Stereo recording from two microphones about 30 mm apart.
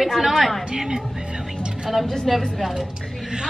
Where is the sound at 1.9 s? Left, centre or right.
Centre.